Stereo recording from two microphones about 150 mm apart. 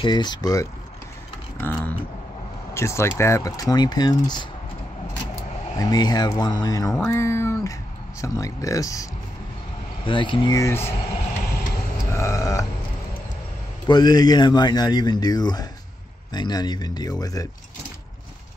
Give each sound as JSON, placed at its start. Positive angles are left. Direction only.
{"t": 0.0, "sound": "speech", "side_deg": 30}
{"t": 1.6, "sound": "speech", "side_deg": 15}
{"t": 5.8, "sound": "speech", "side_deg": 25}
{"t": 10.0, "sound": "speech", "side_deg": 35}
{"t": 12.1, "sound": "a sound", "side_deg": 20}
{"t": 13.8, "sound": "speech", "side_deg": 30}